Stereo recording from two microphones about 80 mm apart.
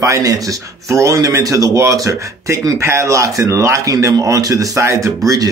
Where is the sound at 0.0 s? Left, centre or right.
Right.